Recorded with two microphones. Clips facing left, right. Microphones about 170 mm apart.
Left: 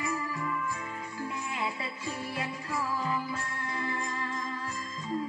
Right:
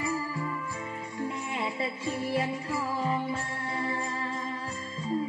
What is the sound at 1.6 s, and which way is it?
Music, 30° right (ahead or behind).